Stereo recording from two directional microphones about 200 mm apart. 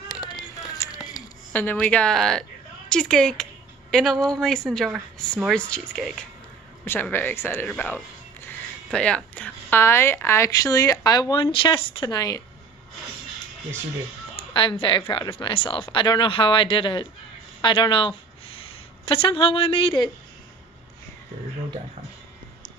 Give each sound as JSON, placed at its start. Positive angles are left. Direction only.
{"t": 0.1, "sound": "a sound", "side_deg": 20}
{"t": 2.9, "sound": "a woman's voice", "side_deg": 5}
{"t": 14.3, "sound": "speech", "side_deg": 25}